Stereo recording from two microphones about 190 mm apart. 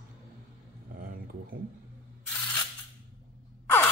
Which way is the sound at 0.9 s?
50° right (ahead or behind).